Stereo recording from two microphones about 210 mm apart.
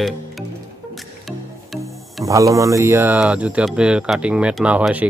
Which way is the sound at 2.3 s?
15° right (ahead or behind).